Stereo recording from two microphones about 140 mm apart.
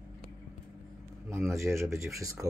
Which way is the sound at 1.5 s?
20° right (ahead or behind).